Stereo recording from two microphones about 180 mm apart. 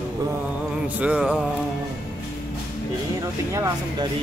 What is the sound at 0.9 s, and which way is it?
Speech, 5° right (ahead or behind).